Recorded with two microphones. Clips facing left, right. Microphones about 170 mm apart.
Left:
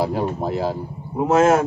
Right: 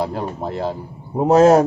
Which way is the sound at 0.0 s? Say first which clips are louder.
Left 2 dB; 5° left (ahead or behind).